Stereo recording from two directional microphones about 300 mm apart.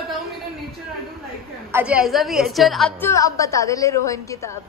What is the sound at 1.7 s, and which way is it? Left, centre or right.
A woman's voice, centre.